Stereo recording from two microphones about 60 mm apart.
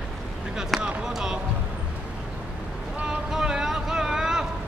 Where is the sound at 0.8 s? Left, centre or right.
Centre.